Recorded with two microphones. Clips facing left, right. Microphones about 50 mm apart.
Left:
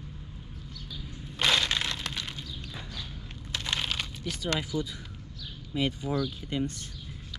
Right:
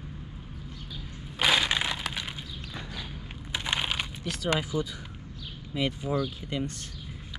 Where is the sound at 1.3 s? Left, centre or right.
Centre.